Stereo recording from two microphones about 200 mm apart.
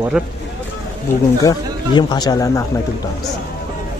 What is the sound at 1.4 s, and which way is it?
Speech, 20° left (ahead or behind).